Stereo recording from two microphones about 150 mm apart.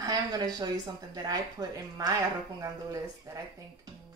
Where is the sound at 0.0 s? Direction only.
30° right (ahead or behind).